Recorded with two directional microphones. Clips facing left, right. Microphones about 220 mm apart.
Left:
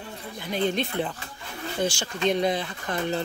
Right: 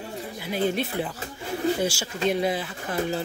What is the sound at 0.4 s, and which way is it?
Speech, 5° right (ahead or behind).